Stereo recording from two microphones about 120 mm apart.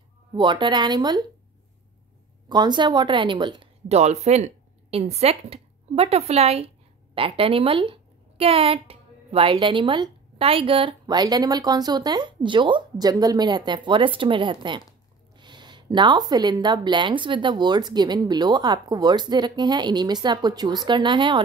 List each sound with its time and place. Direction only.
0.3 s speech: 40° right (ahead or behind)
2.4 s speech: 35° right (ahead or behind)
3.9 s a woman's voice: 65° right (ahead or behind); by 21.4 s 40° right (ahead or behind)